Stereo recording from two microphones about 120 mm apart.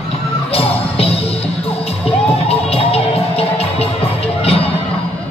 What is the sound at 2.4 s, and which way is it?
Music, 55° left (ahead or behind).